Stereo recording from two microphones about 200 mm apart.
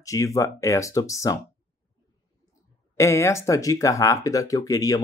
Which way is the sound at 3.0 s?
15° left (ahead or behind).